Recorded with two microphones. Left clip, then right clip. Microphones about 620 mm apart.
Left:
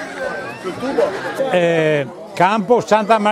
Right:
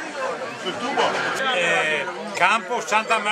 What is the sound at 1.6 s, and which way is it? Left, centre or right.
A man's voice, left.